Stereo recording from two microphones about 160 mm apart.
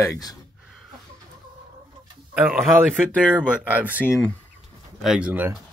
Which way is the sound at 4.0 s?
10° left (ahead or behind).